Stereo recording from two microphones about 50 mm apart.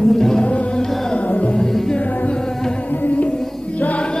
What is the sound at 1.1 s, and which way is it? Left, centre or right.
Music, left.